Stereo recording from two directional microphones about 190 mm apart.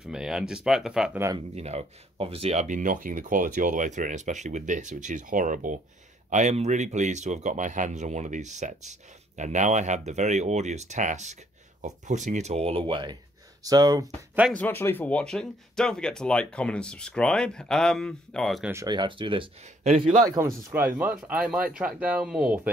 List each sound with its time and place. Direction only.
0.0 s speech: 5° right (ahead or behind)
1.5 s speech: 35° right (ahead or behind)
14.5 s speech: 10° left (ahead or behind)
18.7 s speech: 20° right (ahead or behind)
20.2 s speech: 15° right (ahead or behind)